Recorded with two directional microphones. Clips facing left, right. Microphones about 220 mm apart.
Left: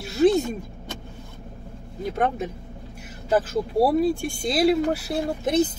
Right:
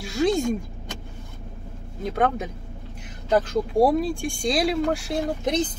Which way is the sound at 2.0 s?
Centre (ahead or behind).